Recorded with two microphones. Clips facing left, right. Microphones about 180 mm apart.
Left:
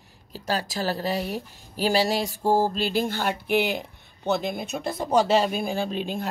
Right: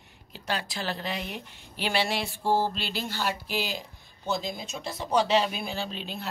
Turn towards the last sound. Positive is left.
turn(degrees=50)  # may be behind; listen again after turning